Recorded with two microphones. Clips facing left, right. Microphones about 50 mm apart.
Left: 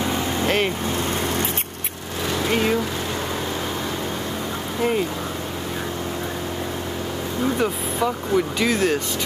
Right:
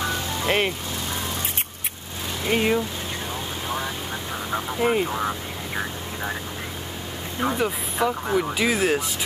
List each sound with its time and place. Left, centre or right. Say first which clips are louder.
0.0 s vehicle: left 4 dB; centre
0.5 s speech: even; centre
2.5 s speech: right 1 dB; centre
4.8 s speech: even; centre
7.5 s speech: left 2 dB; centre